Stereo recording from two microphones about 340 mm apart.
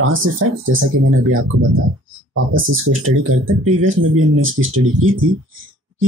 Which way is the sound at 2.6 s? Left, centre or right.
Right.